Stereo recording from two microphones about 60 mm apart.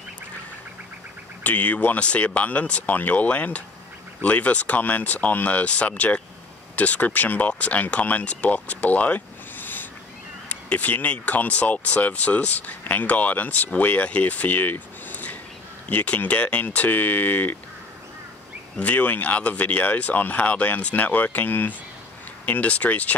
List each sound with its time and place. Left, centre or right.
1.4 s speech: left
18.8 s speech: left